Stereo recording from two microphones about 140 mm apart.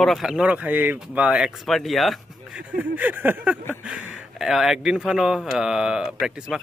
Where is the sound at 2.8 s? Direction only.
10° right (ahead or behind).